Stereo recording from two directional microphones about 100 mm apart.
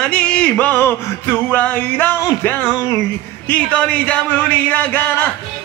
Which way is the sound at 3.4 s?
10° left (ahead or behind).